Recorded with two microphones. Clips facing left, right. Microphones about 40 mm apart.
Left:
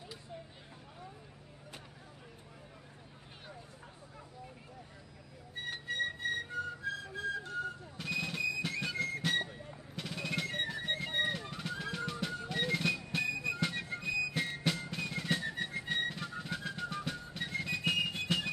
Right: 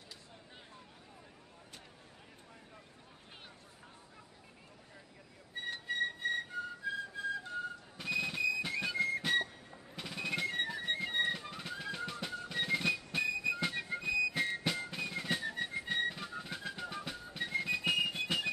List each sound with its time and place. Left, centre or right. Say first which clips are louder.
5.9 s music: even; centre